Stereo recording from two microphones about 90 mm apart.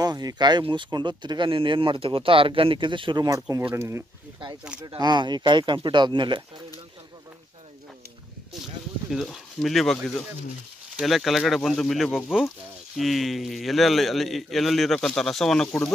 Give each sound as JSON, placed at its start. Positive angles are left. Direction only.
{"t": 0.0, "sound": "speech", "side_deg": -45}
{"t": 1.5, "sound": "speech", "side_deg": -75}
{"t": 3.3, "sound": "speech", "side_deg": -40}
{"t": 4.8, "sound": "speech", "side_deg": -50}
{"t": 9.1, "sound": "a man's voice", "side_deg": 0}